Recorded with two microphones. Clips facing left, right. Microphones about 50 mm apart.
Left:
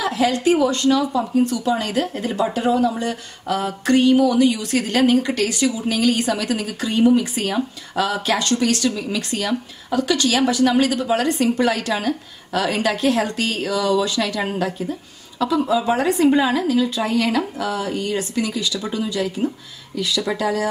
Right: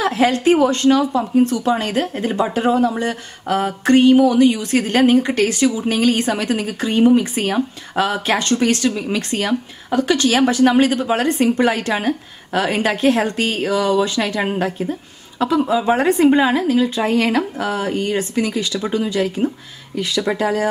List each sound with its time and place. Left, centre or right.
0.0 s a woman's voice: right